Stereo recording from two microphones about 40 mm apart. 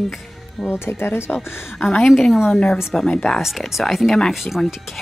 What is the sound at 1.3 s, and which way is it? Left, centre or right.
Speech, left.